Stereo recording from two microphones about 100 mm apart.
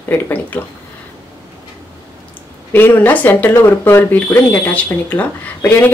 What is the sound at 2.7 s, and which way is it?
Speech, 20° left (ahead or behind).